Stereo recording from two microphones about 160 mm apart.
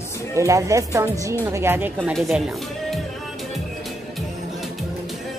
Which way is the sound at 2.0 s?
Centre (ahead or behind).